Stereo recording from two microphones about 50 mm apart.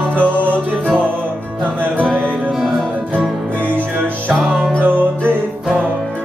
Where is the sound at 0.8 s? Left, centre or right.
Right.